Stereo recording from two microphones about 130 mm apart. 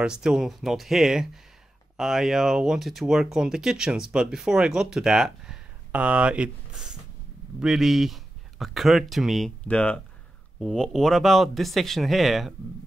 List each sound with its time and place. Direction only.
0.0 s speech: 5° right (ahead or behind)